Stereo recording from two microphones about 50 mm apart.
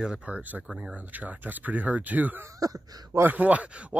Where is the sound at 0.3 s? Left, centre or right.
Right.